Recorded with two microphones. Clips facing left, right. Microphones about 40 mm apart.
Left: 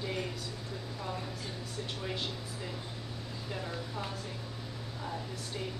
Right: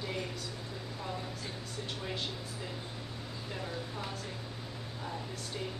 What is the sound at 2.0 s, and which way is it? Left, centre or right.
Speech, centre.